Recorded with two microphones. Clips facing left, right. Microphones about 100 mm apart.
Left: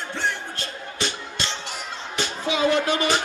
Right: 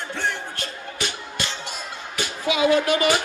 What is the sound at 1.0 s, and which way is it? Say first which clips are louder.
Music: left 1 dB; 15° right (ahead or behind).